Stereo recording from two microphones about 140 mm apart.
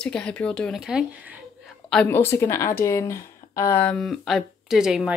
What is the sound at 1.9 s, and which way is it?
Speech, 15° left (ahead or behind).